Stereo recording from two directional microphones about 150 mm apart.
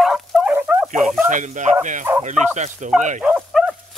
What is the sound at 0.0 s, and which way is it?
Fowl, 5° right (ahead or behind).